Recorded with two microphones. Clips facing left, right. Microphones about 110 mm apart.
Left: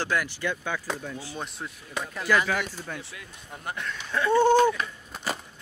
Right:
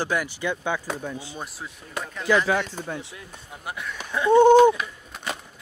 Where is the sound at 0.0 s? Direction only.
15° right (ahead or behind).